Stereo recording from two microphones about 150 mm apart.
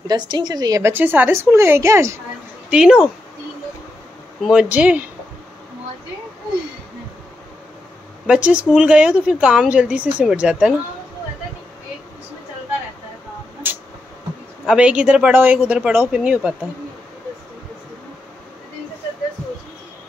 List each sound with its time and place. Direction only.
0.0 s a woman's voice: 25° right (ahead or behind)
2.7 s speech: 5° right (ahead or behind)
4.5 s speech: 5° right (ahead or behind)
8.3 s speech: 10° right (ahead or behind)
14.7 s speech: 5° right (ahead or behind)